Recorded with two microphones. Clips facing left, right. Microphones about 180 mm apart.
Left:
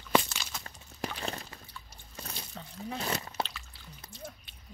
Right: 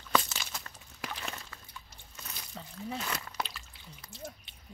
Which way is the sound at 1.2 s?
35° left (ahead or behind).